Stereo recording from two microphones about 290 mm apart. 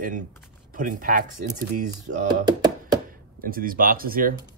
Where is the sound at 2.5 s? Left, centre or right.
Centre.